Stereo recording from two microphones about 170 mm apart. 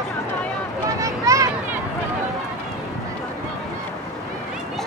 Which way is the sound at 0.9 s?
20° right (ahead or behind).